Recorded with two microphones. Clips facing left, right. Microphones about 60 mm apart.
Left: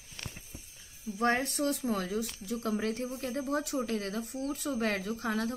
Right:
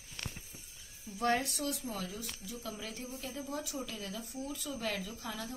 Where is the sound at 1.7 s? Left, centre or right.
Left.